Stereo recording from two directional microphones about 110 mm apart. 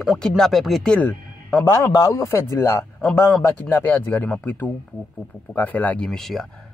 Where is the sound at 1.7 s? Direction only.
30° left (ahead or behind); by 6.1 s 15° left (ahead or behind).